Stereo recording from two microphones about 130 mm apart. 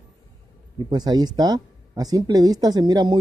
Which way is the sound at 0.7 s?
35° right (ahead or behind).